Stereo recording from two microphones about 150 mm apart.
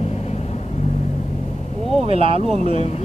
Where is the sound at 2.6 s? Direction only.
45° left (ahead or behind).